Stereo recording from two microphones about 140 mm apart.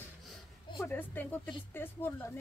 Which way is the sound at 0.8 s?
15° left (ahead or behind).